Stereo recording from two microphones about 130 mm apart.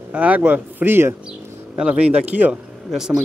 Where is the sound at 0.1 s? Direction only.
10° right (ahead or behind).